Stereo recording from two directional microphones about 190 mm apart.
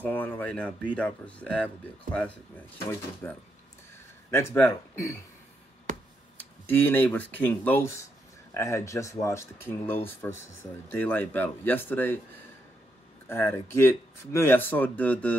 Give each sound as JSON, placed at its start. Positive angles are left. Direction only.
{"t": 0.0, "sound": "speech", "side_deg": 10}
{"t": 5.9, "sound": "finger snapping", "side_deg": -40}
{"t": 6.7, "sound": "speech", "side_deg": 10}
{"t": 13.3, "sound": "speech", "side_deg": 15}